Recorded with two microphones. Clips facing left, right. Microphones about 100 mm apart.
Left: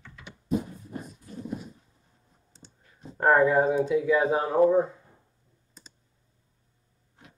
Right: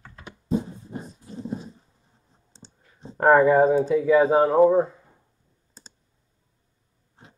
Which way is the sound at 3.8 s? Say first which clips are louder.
Right 4 dB; centre (ahead or behind).